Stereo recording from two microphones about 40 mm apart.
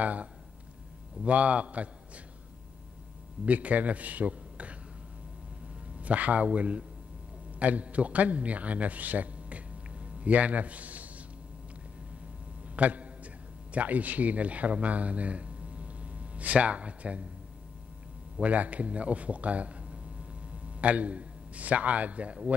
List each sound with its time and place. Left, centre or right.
0.0 s speech: right
3.4 s a man's voice: right
5.9 s a man's voice: right
12.6 s a sound: right
13.7 s speech: right
18.4 s speech: right
20.8 s a man's voice: right